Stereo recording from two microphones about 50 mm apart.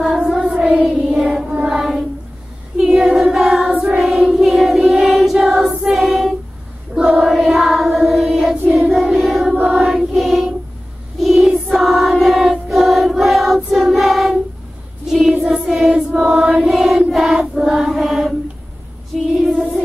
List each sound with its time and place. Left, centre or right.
0.0 s child singing: centre
2.8 s choir: centre
3.8 s child singing: centre
4.9 s music: centre
8.1 s child singing: centre
8.7 s music: centre
9.8 s choir: centre
15.0 s music: centre
16.4 s choir: centre
19.3 s music: centre